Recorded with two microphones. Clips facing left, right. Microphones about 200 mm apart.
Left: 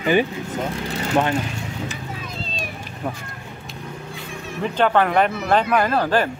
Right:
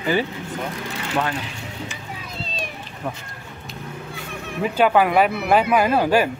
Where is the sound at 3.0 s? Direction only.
5° left (ahead or behind).